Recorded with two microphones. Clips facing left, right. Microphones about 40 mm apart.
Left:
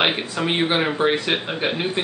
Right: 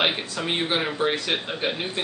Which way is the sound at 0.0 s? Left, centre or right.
Centre.